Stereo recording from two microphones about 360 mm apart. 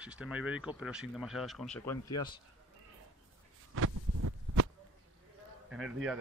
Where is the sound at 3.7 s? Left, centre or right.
Right.